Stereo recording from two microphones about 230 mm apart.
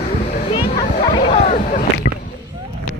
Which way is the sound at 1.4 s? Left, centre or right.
Left.